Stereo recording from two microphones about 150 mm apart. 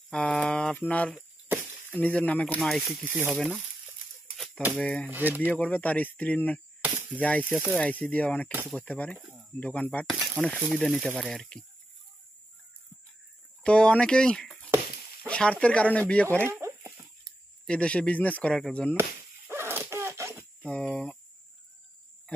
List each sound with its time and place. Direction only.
0.1 s speech: 5° left (ahead or behind)
4.7 s speech: 5° left (ahead or behind)
5.1 s speech: 10° right (ahead or behind)
5.4 s speech: 10° left (ahead or behind)
13.6 s speech: 5° left (ahead or behind)
16.4 s a sound: 15° right (ahead or behind)
17.2 s speech: 5° left (ahead or behind)
18.9 s a sound: 15° right (ahead or behind)
20.6 s speech: 5° left (ahead or behind)